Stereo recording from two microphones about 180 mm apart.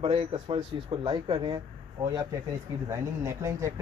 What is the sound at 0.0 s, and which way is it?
Speech, 30° right (ahead or behind).